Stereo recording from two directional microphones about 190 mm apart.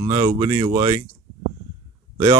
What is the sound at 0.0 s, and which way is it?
Speech, 25° right (ahead or behind).